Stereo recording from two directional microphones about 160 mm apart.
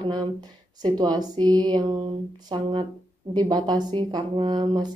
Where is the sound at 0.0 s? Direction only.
25° right (ahead or behind).